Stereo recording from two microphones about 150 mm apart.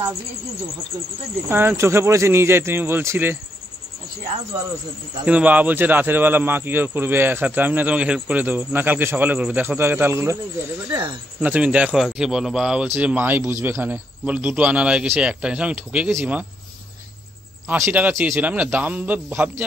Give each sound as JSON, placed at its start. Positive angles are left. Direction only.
{"t": 1.5, "sound": "a man's voice", "side_deg": -15}
{"t": 5.2, "sound": "a man's voice", "side_deg": -10}
{"t": 10.9, "sound": "speech", "side_deg": -30}
{"t": 11.4, "sound": "a man's voice", "side_deg": -10}
{"t": 17.6, "sound": "a man's voice", "side_deg": -15}